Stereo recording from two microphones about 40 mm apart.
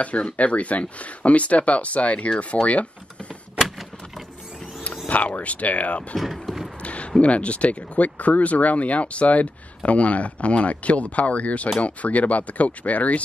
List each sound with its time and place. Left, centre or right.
0.0 s speech: left
5.0 s speech: left
6.1 s boat: centre
6.8 s a sound: left
7.2 s speech: left